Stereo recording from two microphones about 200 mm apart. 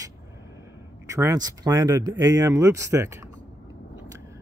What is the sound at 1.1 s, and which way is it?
Speech, 15° right (ahead or behind).